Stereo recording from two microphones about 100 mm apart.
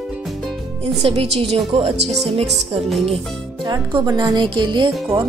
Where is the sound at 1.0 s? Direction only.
70° right (ahead or behind); by 1.9 s 90° right.